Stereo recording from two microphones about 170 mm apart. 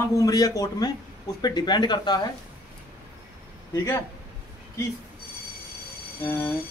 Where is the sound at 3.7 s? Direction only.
20° left (ahead or behind).